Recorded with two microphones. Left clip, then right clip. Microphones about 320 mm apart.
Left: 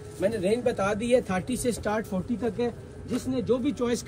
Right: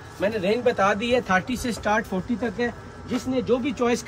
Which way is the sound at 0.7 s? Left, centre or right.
Centre.